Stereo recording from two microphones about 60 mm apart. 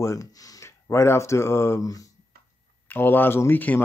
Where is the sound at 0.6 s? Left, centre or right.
Left.